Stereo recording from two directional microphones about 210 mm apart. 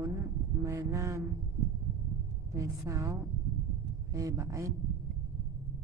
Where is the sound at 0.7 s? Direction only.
15° right (ahead or behind).